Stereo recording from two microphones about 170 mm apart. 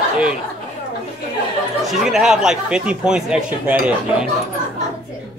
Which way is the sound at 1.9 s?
Centre (ahead or behind).